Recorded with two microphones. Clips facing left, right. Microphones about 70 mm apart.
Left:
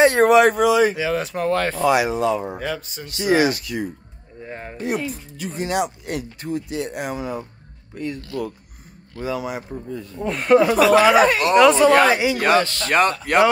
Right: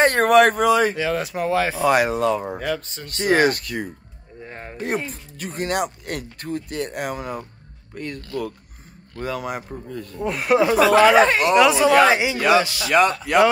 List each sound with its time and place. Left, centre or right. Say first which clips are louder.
0.0 s speech: left 1 dB; right
0.9 s speech: left 1 dB; centre
1.9 s speech: even; right
2.5 s speech: right 2 dB; centre
3.1 s speech: even; right
4.5 s speech: left 3 dB; centre
4.7 s speech: left 1 dB; right
10.1 s speech: left 3 dB; centre
12.1 s speech: even; right
12.4 s speech: right 1 dB; left
12.6 s speech: left 1 dB; centre
12.9 s speech: right 1 dB; left